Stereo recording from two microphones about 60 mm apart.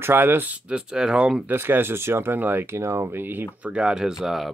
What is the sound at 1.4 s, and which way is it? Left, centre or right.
Speech, right.